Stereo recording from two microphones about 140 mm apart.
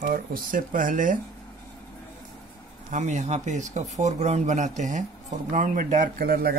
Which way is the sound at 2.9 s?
60° right (ahead or behind).